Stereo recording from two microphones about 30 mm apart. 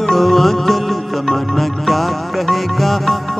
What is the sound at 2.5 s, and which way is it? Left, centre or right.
Music, centre.